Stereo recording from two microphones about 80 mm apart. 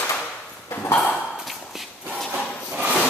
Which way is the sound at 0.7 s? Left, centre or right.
Left.